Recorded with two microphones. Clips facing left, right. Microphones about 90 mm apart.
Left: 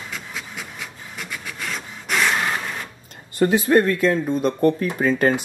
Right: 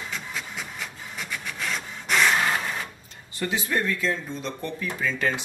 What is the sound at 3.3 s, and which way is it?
Speech, 50° left (ahead or behind).